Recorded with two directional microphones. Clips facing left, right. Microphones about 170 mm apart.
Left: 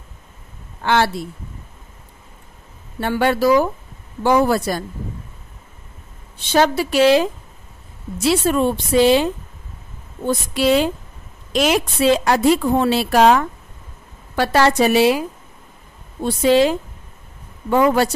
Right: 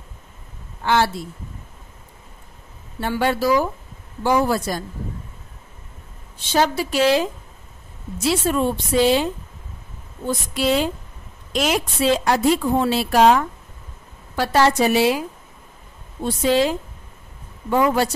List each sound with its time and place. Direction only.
0.8 s a woman's voice: 65° left (ahead or behind)
3.0 s a woman's voice: 65° left (ahead or behind)
6.5 s a woman's voice: 65° left (ahead or behind)
10.2 s a woman's voice: 70° left (ahead or behind)
16.4 s a woman's voice: 70° left (ahead or behind)